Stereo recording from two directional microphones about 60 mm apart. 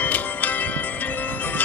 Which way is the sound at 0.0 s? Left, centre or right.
Left.